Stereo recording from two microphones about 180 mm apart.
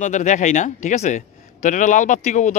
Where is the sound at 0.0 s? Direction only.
40° left (ahead or behind).